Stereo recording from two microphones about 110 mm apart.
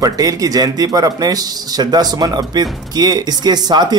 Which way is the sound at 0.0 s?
35° right (ahead or behind).